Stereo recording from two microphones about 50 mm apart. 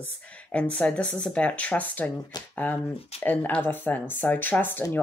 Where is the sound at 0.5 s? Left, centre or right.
Left.